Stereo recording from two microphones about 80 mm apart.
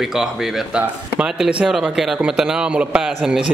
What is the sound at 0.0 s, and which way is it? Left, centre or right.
A man's voice, centre.